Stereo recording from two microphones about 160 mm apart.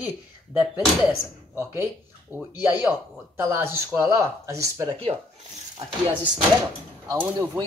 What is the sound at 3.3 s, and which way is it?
Speech, 15° right (ahead or behind).